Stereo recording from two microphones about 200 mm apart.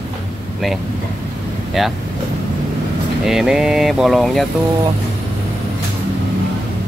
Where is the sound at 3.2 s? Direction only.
Centre (ahead or behind).